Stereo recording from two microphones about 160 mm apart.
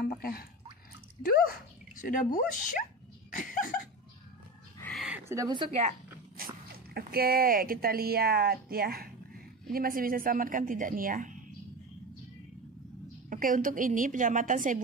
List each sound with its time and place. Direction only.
0.0 s speech: 70° left (ahead or behind)
3.3 s a sound: 55° left (ahead or behind)
4.9 s a sound: 5° right (ahead or behind)
5.3 s a woman's voice: 20° right (ahead or behind)
5.6 s a woman's voice: 40° right (ahead or behind)
6.3 s speech: 70° right (ahead or behind)
13.3 s a woman's voice: 55° right (ahead or behind)